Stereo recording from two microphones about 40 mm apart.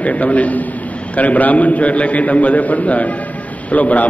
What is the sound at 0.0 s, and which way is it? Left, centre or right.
A man's voice, left.